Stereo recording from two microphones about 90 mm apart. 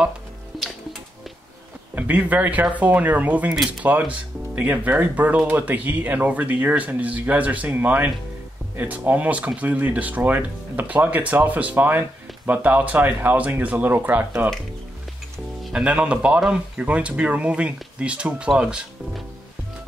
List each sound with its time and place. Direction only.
2.0 s a man's voice: 15° right (ahead or behind)
15.6 s speech: 10° right (ahead or behind)